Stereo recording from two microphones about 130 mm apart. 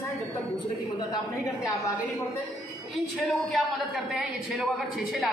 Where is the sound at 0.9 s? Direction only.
35° left (ahead or behind).